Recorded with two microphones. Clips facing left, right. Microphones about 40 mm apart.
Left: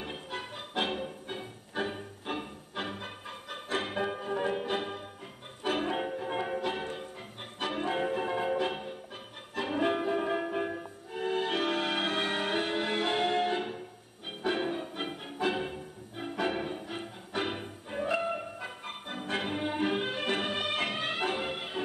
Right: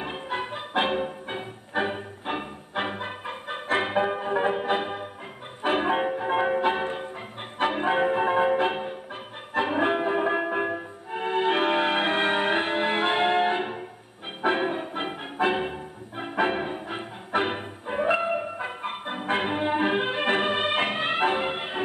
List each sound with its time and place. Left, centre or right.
0.0 s music: right